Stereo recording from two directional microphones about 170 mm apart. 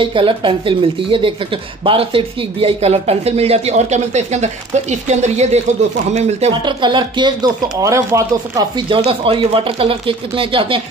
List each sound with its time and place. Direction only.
0.0 s speech: 30° right (ahead or behind)
6.6 s speech: 25° right (ahead or behind)
8.8 s speech: 30° right (ahead or behind)